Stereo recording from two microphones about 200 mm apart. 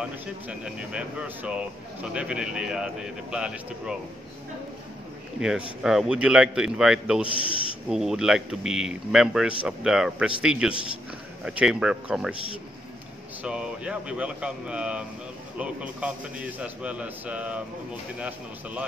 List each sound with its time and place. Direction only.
0.5 s speech: 5° right (ahead or behind)
5.4 s speech: centre (ahead or behind)
13.4 s a man's voice: 5° right (ahead or behind)